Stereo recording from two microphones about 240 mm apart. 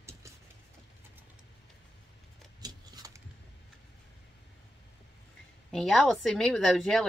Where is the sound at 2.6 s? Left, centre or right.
Centre.